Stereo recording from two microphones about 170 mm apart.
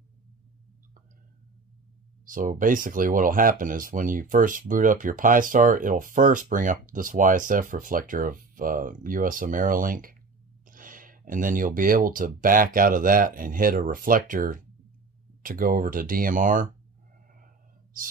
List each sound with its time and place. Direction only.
2.2 s speech: 55° right (ahead or behind)